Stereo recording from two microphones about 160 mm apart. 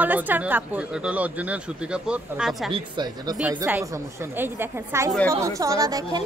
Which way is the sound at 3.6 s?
10° right (ahead or behind).